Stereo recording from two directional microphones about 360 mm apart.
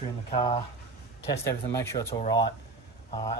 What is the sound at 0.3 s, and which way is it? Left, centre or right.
Speech, centre.